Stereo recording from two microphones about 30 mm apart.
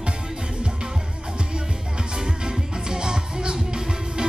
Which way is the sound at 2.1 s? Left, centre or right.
Right.